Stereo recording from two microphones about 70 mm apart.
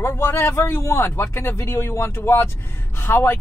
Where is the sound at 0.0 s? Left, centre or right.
Left.